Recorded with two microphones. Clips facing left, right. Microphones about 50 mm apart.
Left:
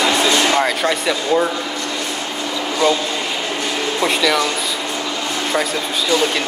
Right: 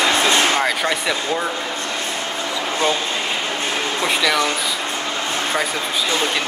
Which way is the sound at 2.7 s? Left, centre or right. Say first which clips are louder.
Left 4 dB; right.